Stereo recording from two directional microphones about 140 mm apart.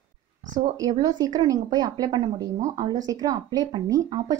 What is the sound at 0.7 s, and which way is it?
A woman's voice, 25° right (ahead or behind).